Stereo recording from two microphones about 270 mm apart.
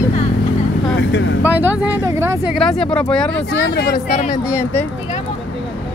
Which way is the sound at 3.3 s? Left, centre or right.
Left.